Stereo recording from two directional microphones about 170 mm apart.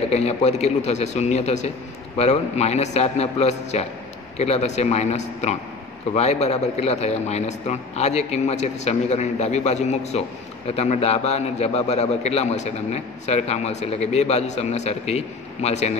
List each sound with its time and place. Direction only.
0.1 s a man's voice: 40° left (ahead or behind)